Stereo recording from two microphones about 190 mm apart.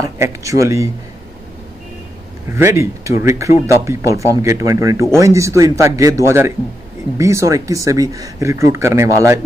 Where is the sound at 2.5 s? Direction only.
15° right (ahead or behind).